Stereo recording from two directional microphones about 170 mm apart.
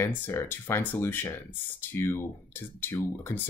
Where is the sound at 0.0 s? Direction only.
15° left (ahead or behind).